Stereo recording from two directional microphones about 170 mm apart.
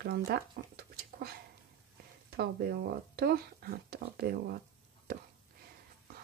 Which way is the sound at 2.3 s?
70° right (ahead or behind).